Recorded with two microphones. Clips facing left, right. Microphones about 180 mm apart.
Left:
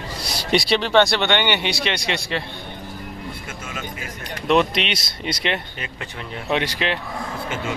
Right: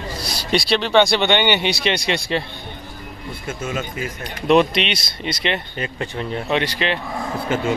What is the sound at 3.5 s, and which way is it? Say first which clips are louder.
Speech: right 8 dB; 25° right (ahead or behind).